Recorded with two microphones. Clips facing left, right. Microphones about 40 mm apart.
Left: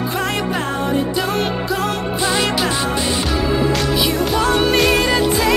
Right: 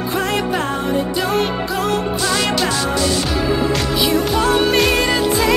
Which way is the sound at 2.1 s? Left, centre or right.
Centre.